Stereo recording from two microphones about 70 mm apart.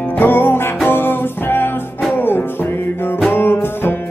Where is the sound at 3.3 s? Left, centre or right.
Left.